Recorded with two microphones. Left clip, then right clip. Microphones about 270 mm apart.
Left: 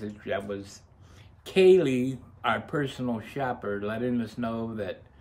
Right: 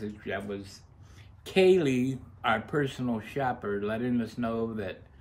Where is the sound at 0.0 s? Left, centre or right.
Centre.